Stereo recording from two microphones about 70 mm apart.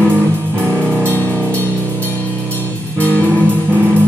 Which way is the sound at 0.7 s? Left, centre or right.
Centre.